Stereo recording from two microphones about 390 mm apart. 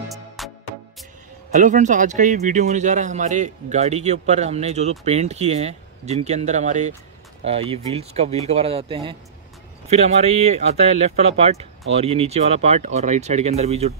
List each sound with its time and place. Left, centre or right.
0.4 s music: centre
1.5 s a man's voice: centre